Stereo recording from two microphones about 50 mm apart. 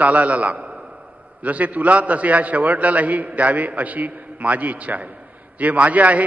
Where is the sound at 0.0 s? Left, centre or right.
Right.